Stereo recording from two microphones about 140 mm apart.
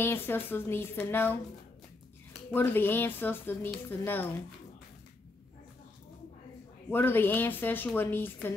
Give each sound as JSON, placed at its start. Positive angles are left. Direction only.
{"t": 0.0, "sound": "a woman's voice", "side_deg": 15}
{"t": 2.5, "sound": "a woman's voice", "side_deg": 15}
{"t": 6.9, "sound": "a woman's voice", "side_deg": 15}